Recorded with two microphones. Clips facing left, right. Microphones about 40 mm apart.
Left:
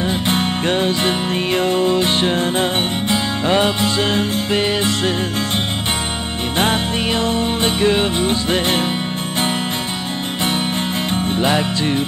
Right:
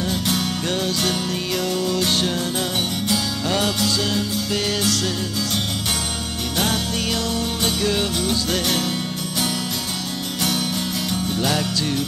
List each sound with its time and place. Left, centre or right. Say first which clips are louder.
0.0 s music: left 4 dB; left
6.6 s music: left 5 dB; left
11.1 s music: left 5 dB; left